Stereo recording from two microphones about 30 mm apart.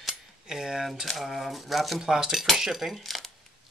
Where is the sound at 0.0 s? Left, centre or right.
Centre.